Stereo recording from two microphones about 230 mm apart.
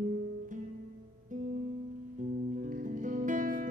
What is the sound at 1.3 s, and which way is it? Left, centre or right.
Music, right.